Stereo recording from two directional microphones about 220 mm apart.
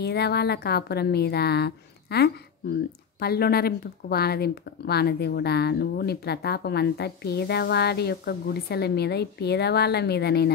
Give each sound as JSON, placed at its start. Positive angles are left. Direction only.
{"t": 0.0, "sound": "a woman's voice", "side_deg": 50}